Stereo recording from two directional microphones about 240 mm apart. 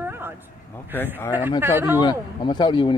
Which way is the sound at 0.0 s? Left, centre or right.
Centre.